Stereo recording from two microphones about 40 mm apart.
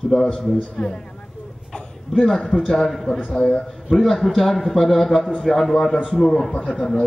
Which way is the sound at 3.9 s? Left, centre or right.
Centre.